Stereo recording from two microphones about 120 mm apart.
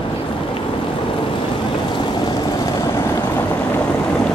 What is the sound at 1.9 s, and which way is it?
Vehicle, 40° left (ahead or behind).